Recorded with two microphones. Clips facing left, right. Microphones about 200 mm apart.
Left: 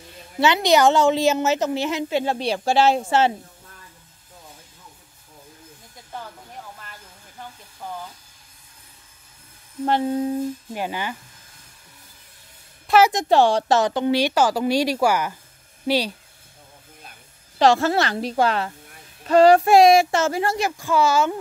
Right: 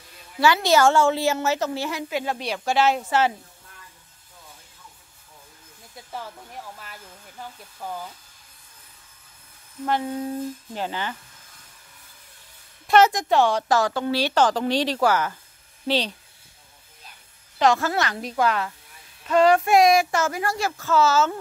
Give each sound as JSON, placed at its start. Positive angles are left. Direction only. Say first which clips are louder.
{"t": 0.4, "sound": "a woman's voice", "louder": "left 2 dB", "side_deg": 20}
{"t": 6.8, "sound": "speech", "louder": "right 1 dB", "side_deg": -5}
{"t": 9.8, "sound": "a woman's voice", "louder": "left 4 dB", "side_deg": 30}
{"t": 10.7, "sound": "speech", "louder": "left 2 dB", "side_deg": 10}
{"t": 12.8, "sound": "a sound", "louder": "left 1 dB", "side_deg": 5}
{"t": 13.1, "sound": "speech", "louder": "left 3 dB", "side_deg": 30}
{"t": 17.6, "sound": "a woman's voice", "louder": "left 3 dB", "side_deg": 30}